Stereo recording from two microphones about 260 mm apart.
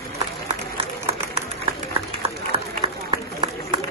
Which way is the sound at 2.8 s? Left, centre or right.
Centre.